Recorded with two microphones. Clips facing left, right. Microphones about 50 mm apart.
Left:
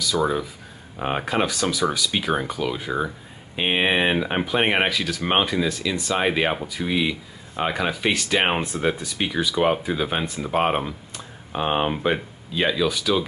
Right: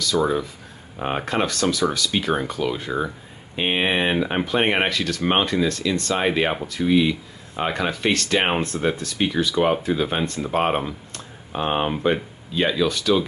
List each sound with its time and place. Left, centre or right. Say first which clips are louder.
0.0 s speech: right 1 dB; centre